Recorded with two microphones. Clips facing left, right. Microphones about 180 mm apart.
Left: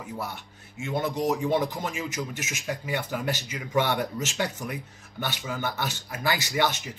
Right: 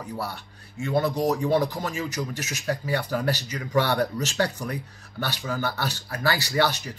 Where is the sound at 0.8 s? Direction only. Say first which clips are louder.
Right 3 dB; 20° left (ahead or behind).